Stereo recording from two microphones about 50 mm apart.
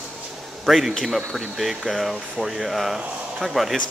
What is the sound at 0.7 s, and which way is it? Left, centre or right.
Speech, centre.